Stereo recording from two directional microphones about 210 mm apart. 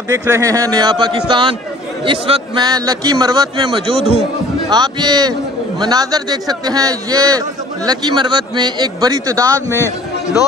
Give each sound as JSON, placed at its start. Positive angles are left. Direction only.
{"t": 0.1, "sound": "a man's voice", "side_deg": -15}
{"t": 9.7, "sound": "a man's voice", "side_deg": 10}